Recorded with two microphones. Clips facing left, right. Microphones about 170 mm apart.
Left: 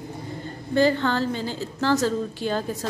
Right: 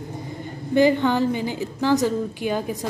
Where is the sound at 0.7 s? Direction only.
15° right (ahead or behind).